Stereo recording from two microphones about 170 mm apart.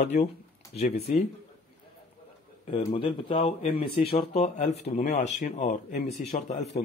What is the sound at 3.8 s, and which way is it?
Speech, 60° left (ahead or behind).